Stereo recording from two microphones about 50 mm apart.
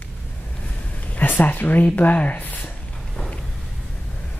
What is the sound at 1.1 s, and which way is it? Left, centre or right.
Speech, left.